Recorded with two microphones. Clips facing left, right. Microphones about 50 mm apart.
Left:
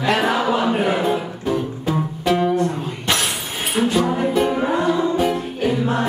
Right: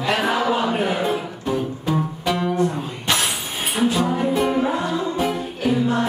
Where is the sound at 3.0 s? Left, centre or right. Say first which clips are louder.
Even; centre.